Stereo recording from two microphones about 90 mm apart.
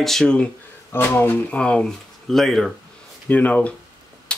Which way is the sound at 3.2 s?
15° left (ahead or behind).